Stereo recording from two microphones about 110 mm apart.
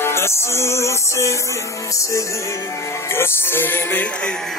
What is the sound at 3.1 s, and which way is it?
Music, 20° left (ahead or behind).